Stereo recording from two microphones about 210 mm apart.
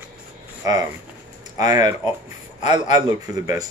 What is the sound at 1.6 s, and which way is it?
Speech, 15° right (ahead or behind).